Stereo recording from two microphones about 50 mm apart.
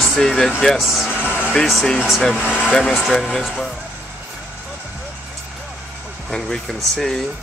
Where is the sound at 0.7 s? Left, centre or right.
Centre.